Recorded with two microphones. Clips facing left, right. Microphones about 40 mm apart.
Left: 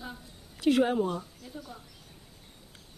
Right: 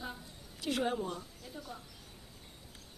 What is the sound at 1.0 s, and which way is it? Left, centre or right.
Speech, centre.